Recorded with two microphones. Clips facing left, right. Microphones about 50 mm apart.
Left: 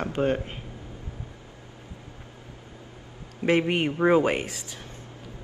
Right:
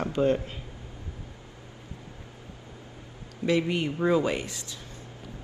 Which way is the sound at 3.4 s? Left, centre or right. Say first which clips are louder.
Left 3 dB; left.